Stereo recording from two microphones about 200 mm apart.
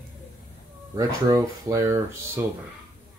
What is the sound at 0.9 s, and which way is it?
Speech, 15° right (ahead or behind).